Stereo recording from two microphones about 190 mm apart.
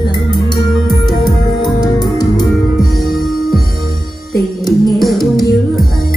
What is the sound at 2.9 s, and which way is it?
Music, centre (ahead or behind).